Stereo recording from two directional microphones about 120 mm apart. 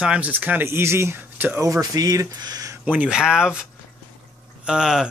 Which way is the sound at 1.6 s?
25° right (ahead or behind).